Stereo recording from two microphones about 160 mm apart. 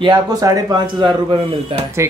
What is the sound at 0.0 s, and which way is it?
Speech, 25° right (ahead or behind).